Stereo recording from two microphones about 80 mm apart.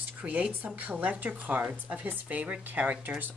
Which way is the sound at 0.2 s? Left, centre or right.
Centre.